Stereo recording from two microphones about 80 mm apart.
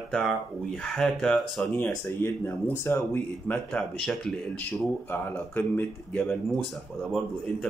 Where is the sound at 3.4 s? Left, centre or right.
Centre.